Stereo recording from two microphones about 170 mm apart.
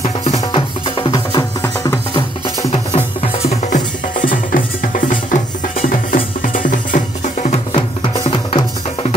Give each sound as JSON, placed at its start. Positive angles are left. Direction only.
{"t": 0.0, "sound": "music", "side_deg": 35}
{"t": 2.9, "sound": "music", "side_deg": 40}
{"t": 7.4, "sound": "music", "side_deg": 40}